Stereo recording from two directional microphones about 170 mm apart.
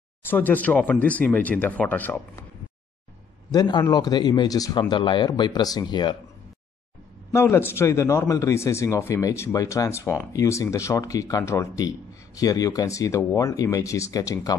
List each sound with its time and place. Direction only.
0.2 s a man's voice: 10° left (ahead or behind)
3.5 s speech: 25° left (ahead or behind)
7.3 s a man's voice: 15° left (ahead or behind)